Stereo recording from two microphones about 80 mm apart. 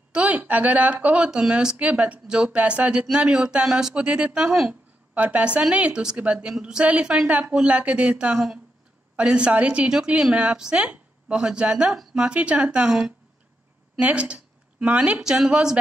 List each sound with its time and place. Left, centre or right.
0.1 s speech: centre